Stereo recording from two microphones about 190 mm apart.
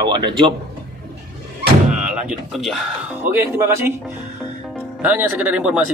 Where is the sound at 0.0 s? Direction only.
25° right (ahead or behind).